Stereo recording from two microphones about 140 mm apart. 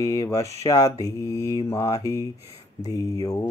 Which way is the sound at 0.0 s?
25° left (ahead or behind).